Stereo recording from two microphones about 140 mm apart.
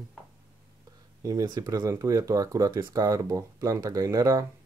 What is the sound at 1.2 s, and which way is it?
Speech, 25° right (ahead or behind).